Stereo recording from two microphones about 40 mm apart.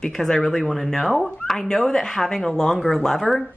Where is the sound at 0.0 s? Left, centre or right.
Centre.